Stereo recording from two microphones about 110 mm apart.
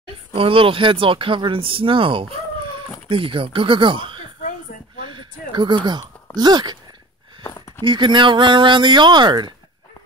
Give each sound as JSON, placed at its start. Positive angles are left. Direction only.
{"t": 0.3, "sound": "speech", "side_deg": -55}
{"t": 5.0, "sound": "a sound", "side_deg": -45}
{"t": 7.8, "sound": "speech", "side_deg": -45}